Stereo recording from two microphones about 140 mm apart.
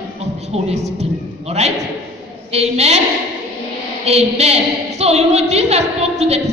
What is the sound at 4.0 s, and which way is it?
Speech, 50° right (ahead or behind).